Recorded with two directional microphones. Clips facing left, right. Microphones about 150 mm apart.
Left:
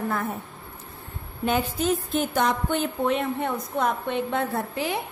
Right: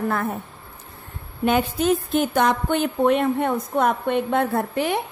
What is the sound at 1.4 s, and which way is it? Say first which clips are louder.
A woman's voice: right 4 dB; 65° right (ahead or behind).